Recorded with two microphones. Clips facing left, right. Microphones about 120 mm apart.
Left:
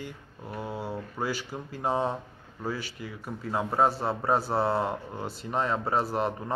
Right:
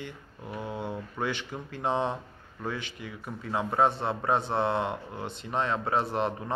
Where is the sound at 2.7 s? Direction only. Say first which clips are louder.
Left 1 dB; 40° left (ahead or behind).